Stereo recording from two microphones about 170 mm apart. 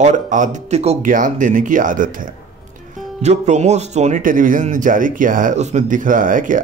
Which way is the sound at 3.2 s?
40° right (ahead or behind).